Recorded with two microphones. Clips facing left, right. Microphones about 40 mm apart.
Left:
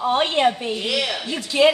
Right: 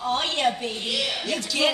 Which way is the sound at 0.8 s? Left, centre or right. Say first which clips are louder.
Left 4 dB; left.